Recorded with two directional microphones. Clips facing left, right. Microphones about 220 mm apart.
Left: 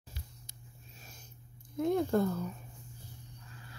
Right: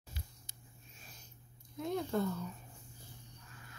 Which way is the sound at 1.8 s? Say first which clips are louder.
Left 7 dB; 50° left (ahead or behind).